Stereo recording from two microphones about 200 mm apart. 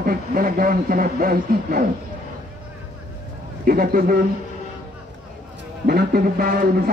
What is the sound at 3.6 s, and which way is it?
Speech, 45° right (ahead or behind).